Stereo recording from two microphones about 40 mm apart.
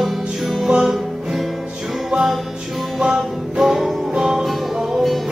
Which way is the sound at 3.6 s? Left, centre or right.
Centre.